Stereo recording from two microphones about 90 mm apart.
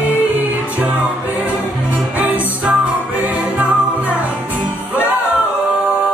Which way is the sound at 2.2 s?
15° right (ahead or behind).